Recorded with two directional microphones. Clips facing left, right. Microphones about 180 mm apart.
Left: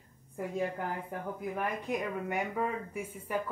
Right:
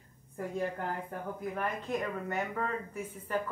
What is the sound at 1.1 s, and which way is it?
Speech, 10° left (ahead or behind).